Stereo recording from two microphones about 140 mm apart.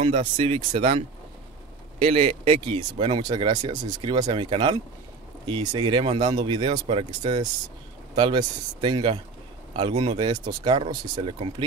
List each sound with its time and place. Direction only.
0.0 s speech: 45° right (ahead or behind)